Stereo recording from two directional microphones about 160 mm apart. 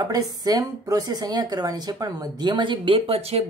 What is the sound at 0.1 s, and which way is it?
Speech, 25° right (ahead or behind).